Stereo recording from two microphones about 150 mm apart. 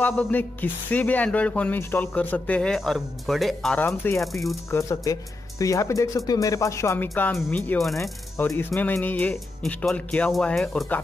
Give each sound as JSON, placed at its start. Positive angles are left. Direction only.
{"t": 0.1, "sound": "speech", "side_deg": 10}